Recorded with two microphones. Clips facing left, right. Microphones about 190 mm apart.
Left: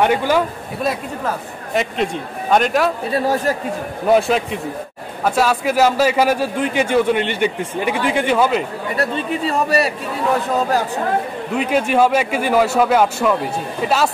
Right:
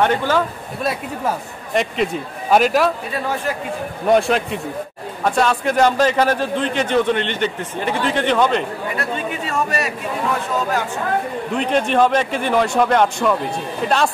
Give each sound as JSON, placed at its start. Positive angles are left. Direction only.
{"t": 0.0, "sound": "a man's voice", "side_deg": 10}
{"t": 1.7, "sound": "speech", "side_deg": 0}
{"t": 3.1, "sound": "speech", "side_deg": 40}
{"t": 4.1, "sound": "a man's voice", "side_deg": 0}
{"t": 8.9, "sound": "speech", "side_deg": 35}
{"t": 11.5, "sound": "speech", "side_deg": 5}